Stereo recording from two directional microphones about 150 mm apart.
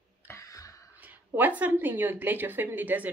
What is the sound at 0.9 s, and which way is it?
A woman's voice, 10° right (ahead or behind).